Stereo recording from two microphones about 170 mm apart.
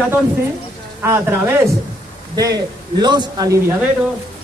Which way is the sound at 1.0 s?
15° right (ahead or behind).